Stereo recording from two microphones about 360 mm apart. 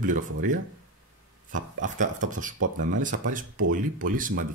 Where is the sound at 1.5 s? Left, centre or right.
Right.